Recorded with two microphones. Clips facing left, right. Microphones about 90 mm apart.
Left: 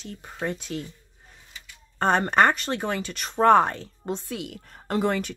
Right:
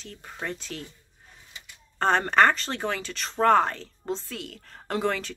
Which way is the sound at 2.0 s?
5° left (ahead or behind).